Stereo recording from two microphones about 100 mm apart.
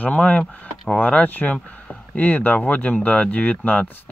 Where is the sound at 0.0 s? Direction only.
15° left (ahead or behind).